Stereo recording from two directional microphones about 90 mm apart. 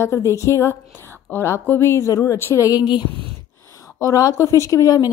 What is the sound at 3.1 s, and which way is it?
Speech, 75° right (ahead or behind).